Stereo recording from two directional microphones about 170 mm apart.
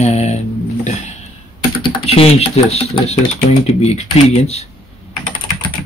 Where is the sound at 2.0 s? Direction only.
35° left (ahead or behind).